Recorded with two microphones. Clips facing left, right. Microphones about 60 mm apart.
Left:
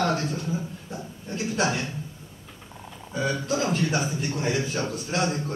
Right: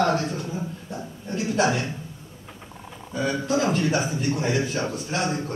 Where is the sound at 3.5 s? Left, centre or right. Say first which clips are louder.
Right 4 dB; centre.